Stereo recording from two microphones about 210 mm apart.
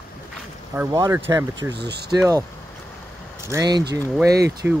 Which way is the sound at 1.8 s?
50° right (ahead or behind).